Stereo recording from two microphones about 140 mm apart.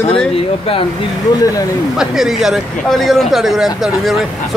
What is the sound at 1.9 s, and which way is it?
Speech, centre (ahead or behind).